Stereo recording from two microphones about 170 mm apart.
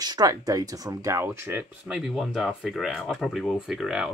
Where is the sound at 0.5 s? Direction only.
20° right (ahead or behind).